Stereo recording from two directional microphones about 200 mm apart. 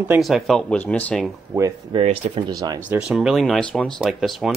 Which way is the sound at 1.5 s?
10° right (ahead or behind).